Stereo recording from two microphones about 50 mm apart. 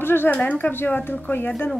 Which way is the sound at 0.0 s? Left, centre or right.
Left.